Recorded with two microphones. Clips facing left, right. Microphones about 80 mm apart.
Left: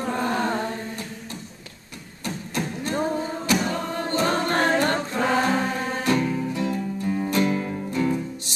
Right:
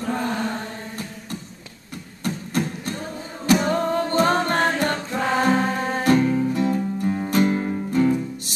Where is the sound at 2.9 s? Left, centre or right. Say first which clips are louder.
Left 6 dB; left.